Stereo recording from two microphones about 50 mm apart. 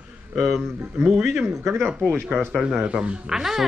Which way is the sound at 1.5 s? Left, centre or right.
Right.